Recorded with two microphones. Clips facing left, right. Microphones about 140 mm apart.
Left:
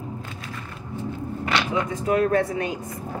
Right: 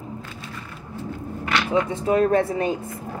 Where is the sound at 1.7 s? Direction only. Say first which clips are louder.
Right 5 dB; 30° right (ahead or behind).